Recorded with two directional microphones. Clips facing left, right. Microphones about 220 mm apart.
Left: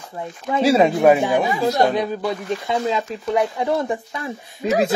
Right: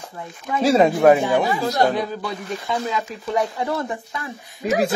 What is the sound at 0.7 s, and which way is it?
Speech, 5° left (ahead or behind).